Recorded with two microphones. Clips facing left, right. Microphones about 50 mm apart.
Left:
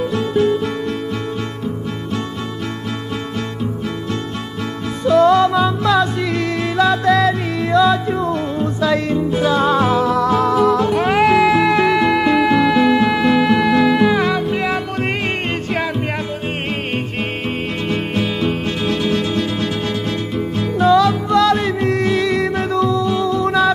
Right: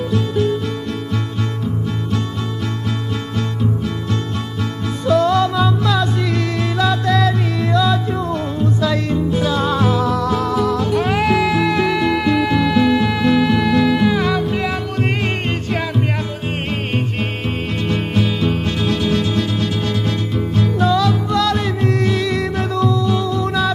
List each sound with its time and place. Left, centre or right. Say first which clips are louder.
0.1 s music: left 1 dB; left
5.0 s music: left 3 dB; centre
17.8 s music: right 1 dB; centre